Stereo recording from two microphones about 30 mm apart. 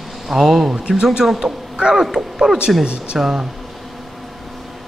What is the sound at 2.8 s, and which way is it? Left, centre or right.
Speech, right.